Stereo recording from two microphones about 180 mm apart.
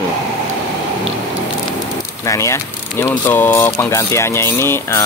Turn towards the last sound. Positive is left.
turn(degrees=15)  # may be behind; listen again after turning